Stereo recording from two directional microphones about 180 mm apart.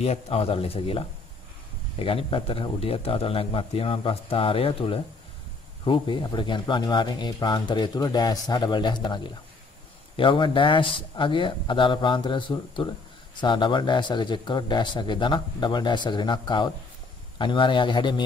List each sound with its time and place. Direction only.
0.0 s a man's voice: 35° left (ahead or behind)